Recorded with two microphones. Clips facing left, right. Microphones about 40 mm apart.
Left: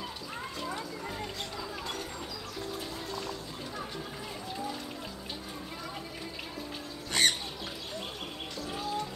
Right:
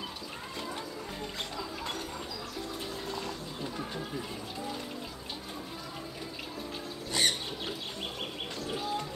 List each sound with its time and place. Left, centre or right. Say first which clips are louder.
7.1 s squawk: left 2 dB; left